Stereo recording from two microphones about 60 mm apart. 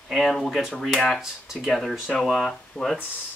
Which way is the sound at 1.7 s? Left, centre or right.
Centre.